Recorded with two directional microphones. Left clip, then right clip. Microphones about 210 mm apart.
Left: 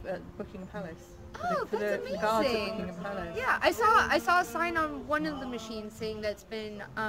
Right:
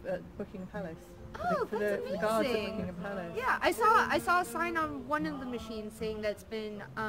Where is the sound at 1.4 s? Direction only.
5° left (ahead or behind).